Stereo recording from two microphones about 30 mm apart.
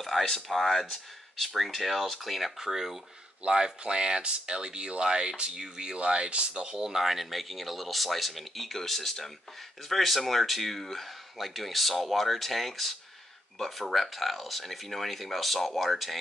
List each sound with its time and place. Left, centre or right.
0.1 s speech: centre
0.6 s speech: centre
1.5 s speech: centre
2.6 s speech: centre
3.4 s speech: right; by 16.2 s centre